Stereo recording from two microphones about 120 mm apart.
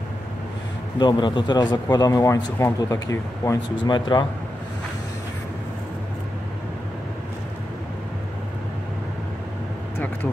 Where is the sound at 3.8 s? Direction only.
40° left (ahead or behind).